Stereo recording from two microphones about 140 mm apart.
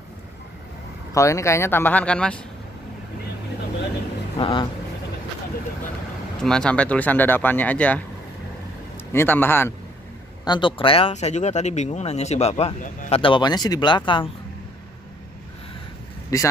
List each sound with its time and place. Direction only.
1.1 s speech: 20° left (ahead or behind)
4.4 s speech: 35° left (ahead or behind)
6.4 s speech: 5° left (ahead or behind)
9.1 s speech: 15° left (ahead or behind)
10.4 s speech: 35° left (ahead or behind); by 12.7 s 50° left (ahead or behind)
13.1 s speech: 35° left (ahead or behind)
16.3 s speech: 25° left (ahead or behind)